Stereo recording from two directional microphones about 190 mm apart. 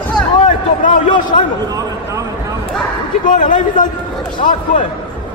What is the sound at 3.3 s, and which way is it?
Speech, 45° left (ahead or behind).